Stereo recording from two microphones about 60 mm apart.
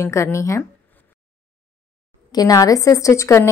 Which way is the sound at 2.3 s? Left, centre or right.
Left.